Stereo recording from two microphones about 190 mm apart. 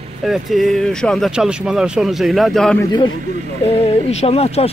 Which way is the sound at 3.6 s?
35° left (ahead or behind).